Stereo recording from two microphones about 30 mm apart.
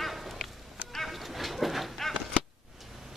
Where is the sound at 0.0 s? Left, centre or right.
Centre.